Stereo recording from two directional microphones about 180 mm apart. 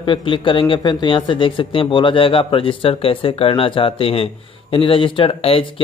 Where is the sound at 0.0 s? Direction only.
30° left (ahead or behind).